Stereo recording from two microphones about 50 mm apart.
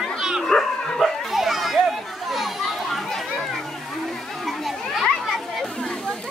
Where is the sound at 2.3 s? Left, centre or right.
Centre.